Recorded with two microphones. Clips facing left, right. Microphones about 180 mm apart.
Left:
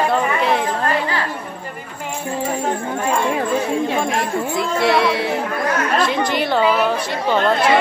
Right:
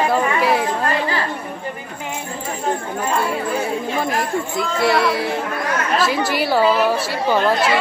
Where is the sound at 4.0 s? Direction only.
Centre (ahead or behind).